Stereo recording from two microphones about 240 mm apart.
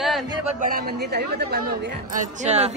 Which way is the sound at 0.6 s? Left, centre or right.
Right.